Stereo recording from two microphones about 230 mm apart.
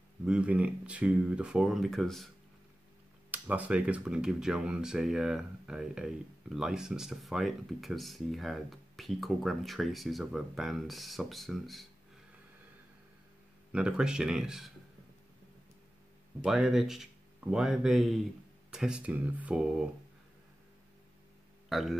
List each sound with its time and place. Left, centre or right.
0.2 s speech: centre
3.3 s speech: centre
13.7 s speech: centre
16.4 s speech: centre
21.6 s speech: centre